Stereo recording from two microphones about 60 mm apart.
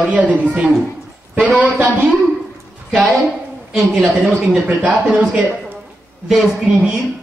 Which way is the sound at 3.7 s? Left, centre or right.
Centre.